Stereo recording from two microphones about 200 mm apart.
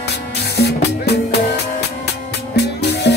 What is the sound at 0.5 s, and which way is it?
Music, 55° left (ahead or behind).